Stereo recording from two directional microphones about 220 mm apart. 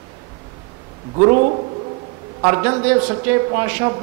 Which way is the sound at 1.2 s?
20° right (ahead or behind).